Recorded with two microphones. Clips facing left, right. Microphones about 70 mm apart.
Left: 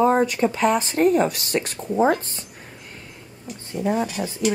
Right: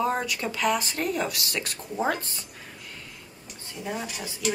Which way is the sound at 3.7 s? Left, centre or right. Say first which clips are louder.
Left 10 dB; left.